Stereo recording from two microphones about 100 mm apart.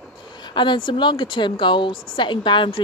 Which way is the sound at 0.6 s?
55° left (ahead or behind).